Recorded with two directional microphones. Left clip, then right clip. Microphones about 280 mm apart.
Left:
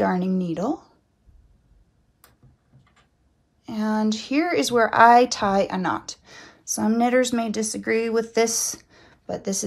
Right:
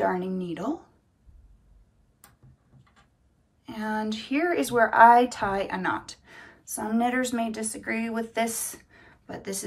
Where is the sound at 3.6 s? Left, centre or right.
Centre.